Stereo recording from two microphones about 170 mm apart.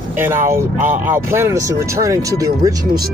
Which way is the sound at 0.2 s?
15° right (ahead or behind).